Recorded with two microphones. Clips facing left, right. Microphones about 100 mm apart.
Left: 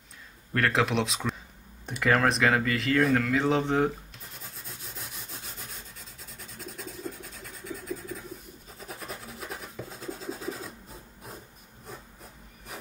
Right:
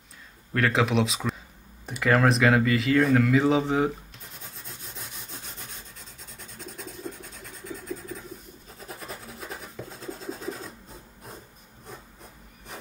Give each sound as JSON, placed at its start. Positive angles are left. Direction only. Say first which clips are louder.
{"t": 0.5, "sound": "speech", "louder": "right 2 dB", "side_deg": 0}
{"t": 1.9, "sound": "a sound", "louder": "right 2 dB", "side_deg": 0}
{"t": 6.3, "sound": "rub", "louder": "even", "side_deg": 0}
{"t": 8.7, "sound": "filing", "louder": "right 1 dB", "side_deg": 0}